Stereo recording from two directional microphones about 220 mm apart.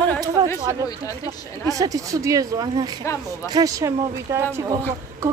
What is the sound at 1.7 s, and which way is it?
Speech, 15° right (ahead or behind).